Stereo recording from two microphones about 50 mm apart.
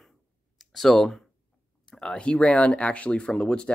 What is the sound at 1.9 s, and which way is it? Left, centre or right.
Speech, centre.